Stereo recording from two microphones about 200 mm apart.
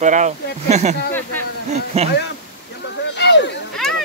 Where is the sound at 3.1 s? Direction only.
60° left (ahead or behind).